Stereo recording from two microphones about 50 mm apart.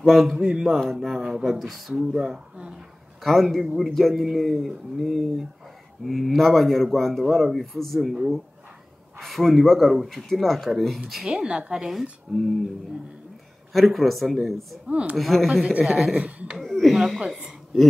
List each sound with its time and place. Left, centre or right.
0.0 s a man's voice: centre
0.3 s speech: centre
0.7 s a man's voice: centre
3.2 s a man's voice: centre
9.2 s a man's voice: centre
11.4 s a woman's voice: centre
11.9 s a man's voice: centre
13.7 s a man's voice: centre
14.9 s a woman's voice: right
15.1 s a man's voice: centre
16.3 s a woman's voice: right
16.5 s a man's voice: centre